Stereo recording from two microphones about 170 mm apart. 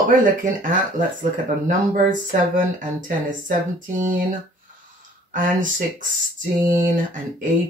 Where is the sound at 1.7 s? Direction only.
50° right (ahead or behind).